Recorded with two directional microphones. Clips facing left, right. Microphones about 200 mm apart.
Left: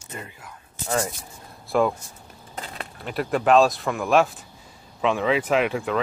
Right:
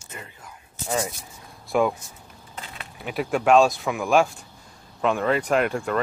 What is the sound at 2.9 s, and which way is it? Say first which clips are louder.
Sanding: even; 5° right (ahead or behind).